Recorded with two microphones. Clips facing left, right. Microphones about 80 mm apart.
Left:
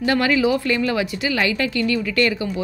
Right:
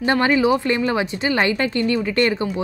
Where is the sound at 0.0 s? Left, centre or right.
Right.